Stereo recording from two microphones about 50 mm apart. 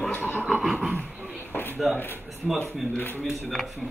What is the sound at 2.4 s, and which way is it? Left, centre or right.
Speech, centre.